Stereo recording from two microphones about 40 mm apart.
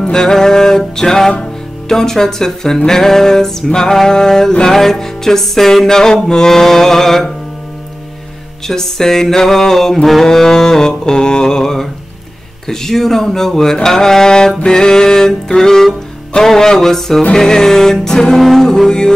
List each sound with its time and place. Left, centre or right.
0.0 s music: centre
8.6 s music: centre